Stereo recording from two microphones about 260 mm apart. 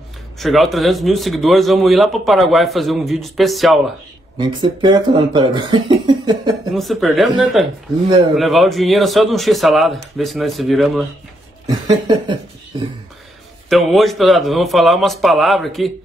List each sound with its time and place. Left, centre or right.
0.4 s speech: centre
4.4 s speech: centre
6.7 s speech: centre
11.6 s speech: centre
13.7 s speech: centre